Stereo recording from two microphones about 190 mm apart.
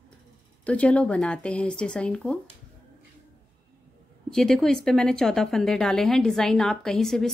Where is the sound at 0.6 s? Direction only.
5° left (ahead or behind).